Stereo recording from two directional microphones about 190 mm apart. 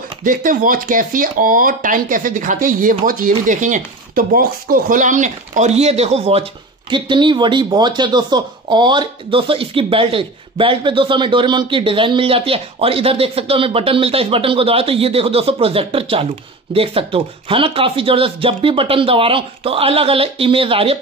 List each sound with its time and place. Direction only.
0.2 s speech: 45° right (ahead or behind); by 21.0 s 30° right (ahead or behind)